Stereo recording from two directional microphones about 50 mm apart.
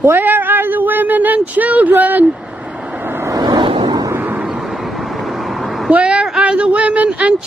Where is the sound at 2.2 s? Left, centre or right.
Centre.